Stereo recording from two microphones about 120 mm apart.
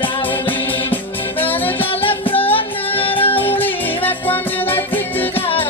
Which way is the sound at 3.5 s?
15° left (ahead or behind).